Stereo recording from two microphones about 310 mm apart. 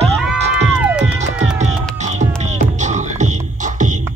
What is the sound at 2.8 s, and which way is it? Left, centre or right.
Music, right.